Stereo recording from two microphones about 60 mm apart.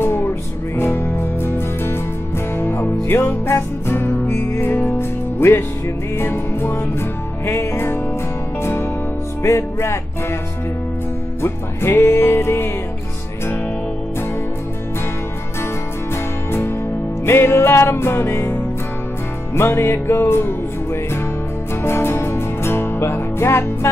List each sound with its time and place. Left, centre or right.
0.0 s music: left
9.4 s music: left
11.4 s music: left
17.3 s music: left